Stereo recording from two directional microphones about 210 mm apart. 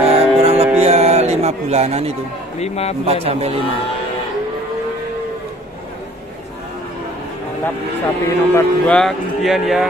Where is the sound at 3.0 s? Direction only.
30° right (ahead or behind).